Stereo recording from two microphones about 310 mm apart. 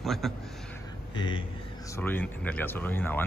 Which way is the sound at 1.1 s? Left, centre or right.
Centre.